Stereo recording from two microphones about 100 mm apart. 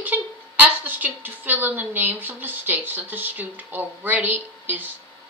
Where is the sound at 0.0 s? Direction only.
15° right (ahead or behind).